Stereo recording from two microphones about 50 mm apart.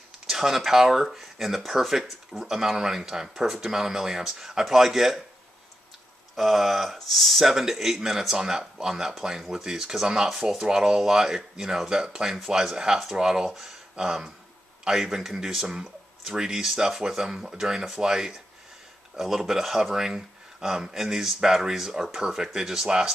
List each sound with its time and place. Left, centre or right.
0.3 s speech: centre
6.3 s speech: centre